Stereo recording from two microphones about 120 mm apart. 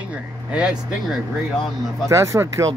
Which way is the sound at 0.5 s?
10° right (ahead or behind).